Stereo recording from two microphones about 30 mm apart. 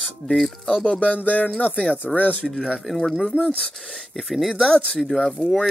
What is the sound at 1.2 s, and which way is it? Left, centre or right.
Speech, left.